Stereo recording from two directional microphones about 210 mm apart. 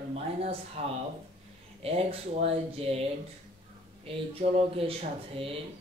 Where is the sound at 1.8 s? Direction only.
30° right (ahead or behind).